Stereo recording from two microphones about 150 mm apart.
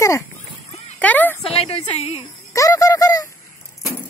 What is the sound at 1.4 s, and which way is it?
Speech, 40° left (ahead or behind).